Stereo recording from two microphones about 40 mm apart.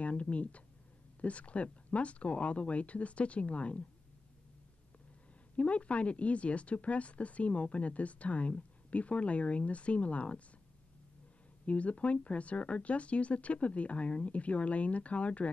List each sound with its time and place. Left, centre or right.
0.0 s speech: left
5.6 s speech: left
11.6 s speech: left